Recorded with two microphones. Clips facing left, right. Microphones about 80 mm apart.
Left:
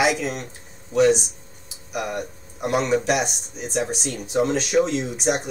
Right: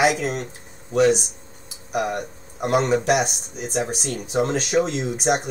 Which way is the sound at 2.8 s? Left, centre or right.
Right.